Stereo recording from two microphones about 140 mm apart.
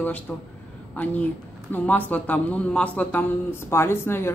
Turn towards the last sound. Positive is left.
turn(degrees=15)  # may be behind; listen again after turning